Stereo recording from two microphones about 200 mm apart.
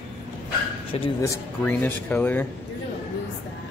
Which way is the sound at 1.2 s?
10° left (ahead or behind).